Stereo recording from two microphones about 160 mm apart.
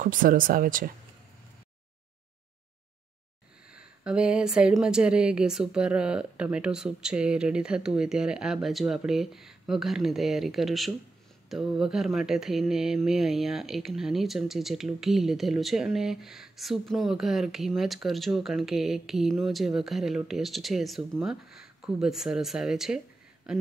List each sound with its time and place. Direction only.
0.0 s speech: 60° right (ahead or behind)
4.0 s speech: 5° right (ahead or behind)